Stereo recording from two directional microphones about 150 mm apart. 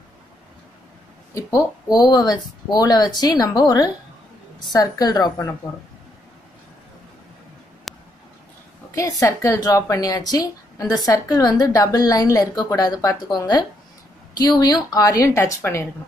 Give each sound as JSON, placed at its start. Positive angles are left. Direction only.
{"t": 1.3, "sound": "a woman's voice", "side_deg": 25}
{"t": 7.9, "sound": "a sound", "side_deg": 0}
{"t": 8.9, "sound": "a woman's voice", "side_deg": 20}